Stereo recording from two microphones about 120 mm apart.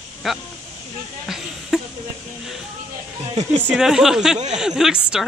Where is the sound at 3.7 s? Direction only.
5° right (ahead or behind).